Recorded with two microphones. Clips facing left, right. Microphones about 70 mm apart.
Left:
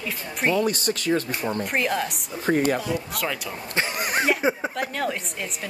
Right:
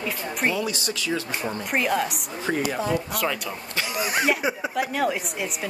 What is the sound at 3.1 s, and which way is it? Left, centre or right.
Speech, centre.